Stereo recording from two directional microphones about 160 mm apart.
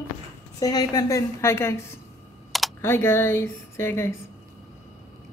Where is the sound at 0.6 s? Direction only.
25° left (ahead or behind).